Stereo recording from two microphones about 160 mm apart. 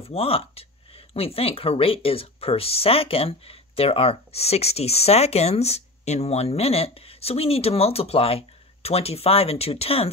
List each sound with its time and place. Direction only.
0.0 s speech: 35° left (ahead or behind)